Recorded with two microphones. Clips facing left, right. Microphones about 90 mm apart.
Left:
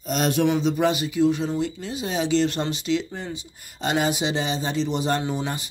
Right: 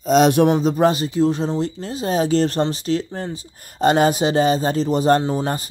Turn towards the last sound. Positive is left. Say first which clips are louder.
# right 6 dB
turn(degrees=-40)  # may be behind; listen again after turning